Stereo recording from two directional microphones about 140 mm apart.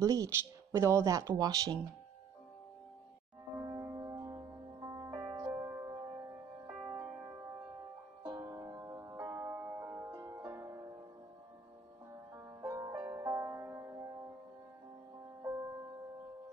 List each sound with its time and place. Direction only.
0.0 s speech: 25° right (ahead or behind)
3.5 s music: 20° right (ahead or behind)
12.6 s music: 20° right (ahead or behind)